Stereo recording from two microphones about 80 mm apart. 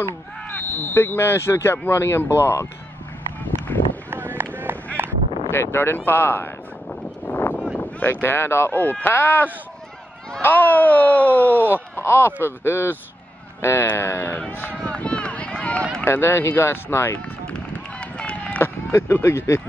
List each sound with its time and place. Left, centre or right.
0.5 s speech: left
3.4 s a sound: left
4.1 s run: right
5.0 s quack: right
5.5 s speech: left
7.2 s a sound: left
7.8 s speech: left
11.5 s speech: right
11.9 s speech: left
14.9 s run: centre
16.0 s speech: left
18.1 s run: centre
18.6 s speech: left